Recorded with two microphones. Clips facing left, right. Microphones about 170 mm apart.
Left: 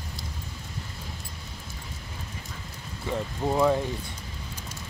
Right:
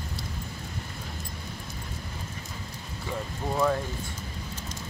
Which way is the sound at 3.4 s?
15° left (ahead or behind).